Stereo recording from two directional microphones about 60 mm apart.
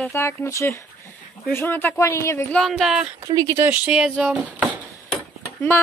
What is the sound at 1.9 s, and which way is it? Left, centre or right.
Speech, left.